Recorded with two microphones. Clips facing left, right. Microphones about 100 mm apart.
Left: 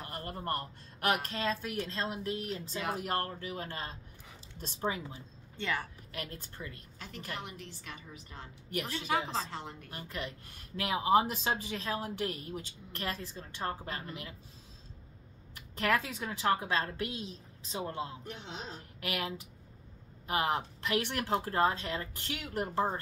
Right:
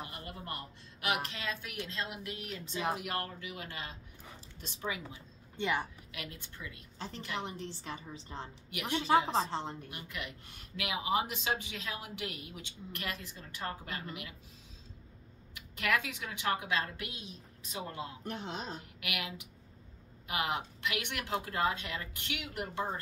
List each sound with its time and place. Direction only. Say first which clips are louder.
0.1 s speech: left 7 dB; 45° left (ahead or behind)
5.6 s a woman's voice: right 2 dB; 20° right (ahead or behind)
6.1 s speech: left 4 dB; 40° left (ahead or behind)
7.0 s a woman's voice: right 3 dB; 30° right (ahead or behind)
8.6 s speech: left 6 dB; 40° left (ahead or behind)
8.9 s a woman's voice: right 7 dB; 30° right (ahead or behind)
9.8 s speech: left 3 dB; 35° left (ahead or behind)
15.5 s speech: left 2 dB; 35° left (ahead or behind)
18.2 s speech: right 4 dB; 50° right (ahead or behind)
18.9 s speech: left 7 dB; 35° left (ahead or behind)